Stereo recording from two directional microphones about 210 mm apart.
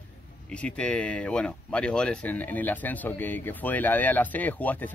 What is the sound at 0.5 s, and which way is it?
Speech, 5° left (ahead or behind).